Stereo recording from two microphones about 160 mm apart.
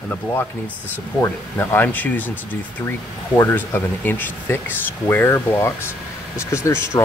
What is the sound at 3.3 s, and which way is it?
Speech, 10° left (ahead or behind).